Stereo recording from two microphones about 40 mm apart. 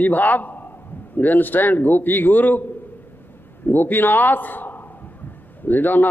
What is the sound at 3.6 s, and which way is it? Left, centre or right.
A man's voice, left.